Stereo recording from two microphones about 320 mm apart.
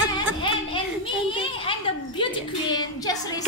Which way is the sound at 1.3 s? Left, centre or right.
Centre.